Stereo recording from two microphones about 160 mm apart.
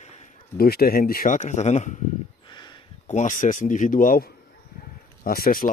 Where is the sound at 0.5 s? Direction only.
70° left (ahead or behind); by 1.9 s 45° left (ahead or behind).